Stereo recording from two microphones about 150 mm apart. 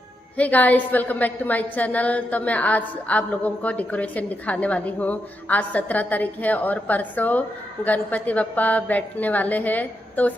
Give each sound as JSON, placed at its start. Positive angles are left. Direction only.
{"t": 0.4, "sound": "a woman's voice", "side_deg": 10}